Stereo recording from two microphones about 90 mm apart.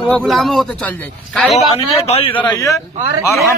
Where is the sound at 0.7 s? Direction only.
15° left (ahead or behind).